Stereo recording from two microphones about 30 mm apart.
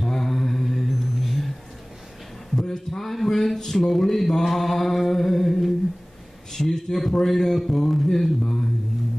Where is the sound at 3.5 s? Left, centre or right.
Centre.